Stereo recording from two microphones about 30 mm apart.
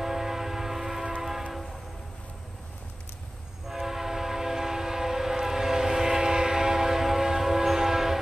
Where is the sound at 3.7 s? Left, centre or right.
Centre.